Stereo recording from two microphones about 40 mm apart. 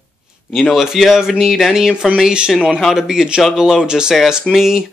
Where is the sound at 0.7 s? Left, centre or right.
Centre.